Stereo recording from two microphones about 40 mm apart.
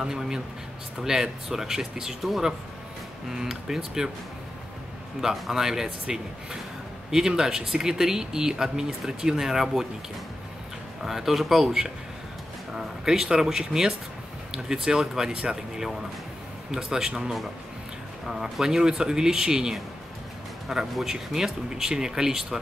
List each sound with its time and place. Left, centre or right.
0.0 s speech: centre
3.3 s speech: centre
5.2 s speech: centre
11.1 s speech: centre
11.6 s speech: centre